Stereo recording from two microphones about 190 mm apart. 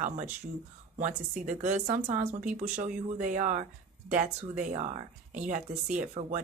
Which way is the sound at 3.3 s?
40° right (ahead or behind).